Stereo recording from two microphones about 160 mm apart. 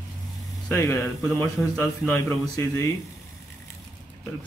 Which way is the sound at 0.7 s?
15° left (ahead or behind).